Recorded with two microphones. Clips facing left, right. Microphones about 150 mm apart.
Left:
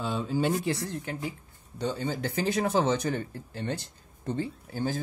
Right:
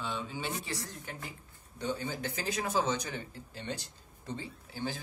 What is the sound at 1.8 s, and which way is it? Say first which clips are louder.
Speech: left 5 dB; 65° left (ahead or behind).